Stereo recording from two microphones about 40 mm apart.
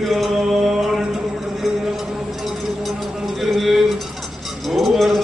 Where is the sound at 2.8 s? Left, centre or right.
Centre.